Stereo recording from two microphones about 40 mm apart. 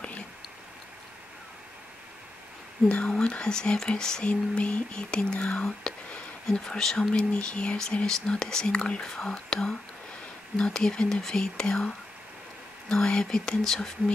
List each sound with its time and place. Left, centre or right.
3.1 s speech: left
4.3 s speech: left; by 13.9 s centre